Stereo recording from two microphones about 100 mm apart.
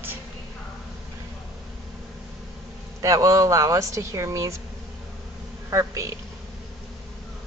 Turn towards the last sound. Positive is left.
turn(degrees=-30)  # may be behind; listen again after turning